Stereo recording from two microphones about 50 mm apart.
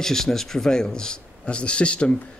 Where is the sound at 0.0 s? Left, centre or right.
Centre.